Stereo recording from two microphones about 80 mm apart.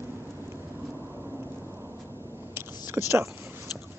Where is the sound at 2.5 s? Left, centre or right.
Right.